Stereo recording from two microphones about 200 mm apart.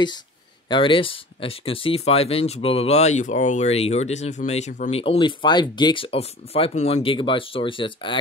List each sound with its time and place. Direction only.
0.7 s speech: 25° left (ahead or behind)